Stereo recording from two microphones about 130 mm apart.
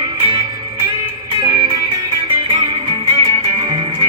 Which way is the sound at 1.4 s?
35° right (ahead or behind).